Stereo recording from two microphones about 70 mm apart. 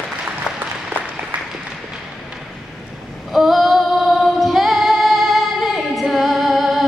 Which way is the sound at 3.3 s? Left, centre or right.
Centre.